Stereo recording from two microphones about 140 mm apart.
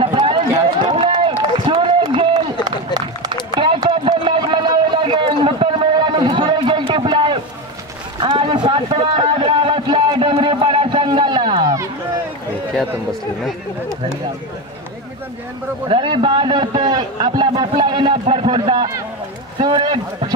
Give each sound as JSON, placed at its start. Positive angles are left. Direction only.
{"t": 0.0, "sound": "run", "side_deg": -40}
{"t": 3.5, "sound": "a sound", "side_deg": -35}
{"t": 15.9, "sound": "a man's voice", "side_deg": -40}